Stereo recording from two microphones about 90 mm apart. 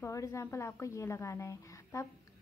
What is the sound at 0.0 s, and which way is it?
A woman's voice, 35° left (ahead or behind).